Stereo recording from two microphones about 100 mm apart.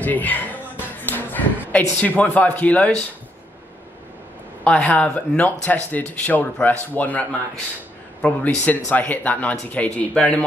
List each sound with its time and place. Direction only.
0.0 s a man's voice: 15° left (ahead or behind)
4.6 s speech: 10° left (ahead or behind)